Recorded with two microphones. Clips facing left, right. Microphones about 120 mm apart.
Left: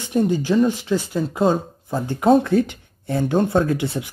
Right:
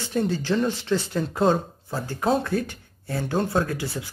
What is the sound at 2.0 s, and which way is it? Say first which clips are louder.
Speech: left 8 dB; 20° left (ahead or behind).